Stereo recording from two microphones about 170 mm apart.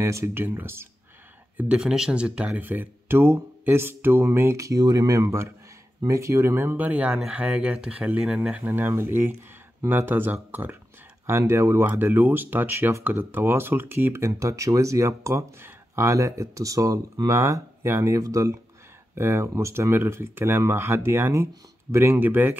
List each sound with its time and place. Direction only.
0.0 s speech: 15° right (ahead or behind)